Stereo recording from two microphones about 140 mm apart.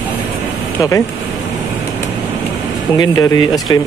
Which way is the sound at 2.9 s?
25° left (ahead or behind).